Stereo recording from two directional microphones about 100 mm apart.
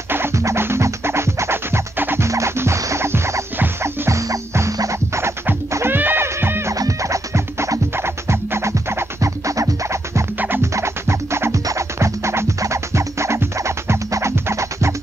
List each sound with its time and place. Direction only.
0.1 s music: 25° right (ahead or behind)